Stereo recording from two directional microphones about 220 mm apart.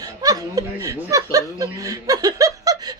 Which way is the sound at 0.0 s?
15° right (ahead or behind).